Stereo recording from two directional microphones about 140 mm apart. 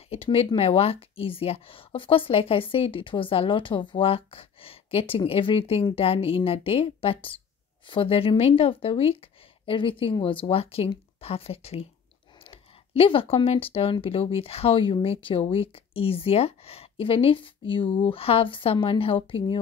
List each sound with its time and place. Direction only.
0.1 s a woman's voice: 45° left (ahead or behind)
12.4 s a sound: 40° left (ahead or behind)
14.0 s speech: 45° left (ahead or behind)